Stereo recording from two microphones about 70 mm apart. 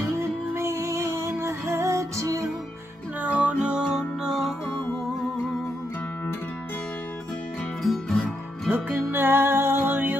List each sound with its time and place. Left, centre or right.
0.2 s music: right
3.2 s music: right; by 4.6 s centre
7.8 s music: centre
8.6 s music: right